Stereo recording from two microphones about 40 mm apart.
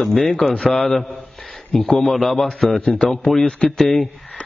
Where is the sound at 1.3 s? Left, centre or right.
Centre.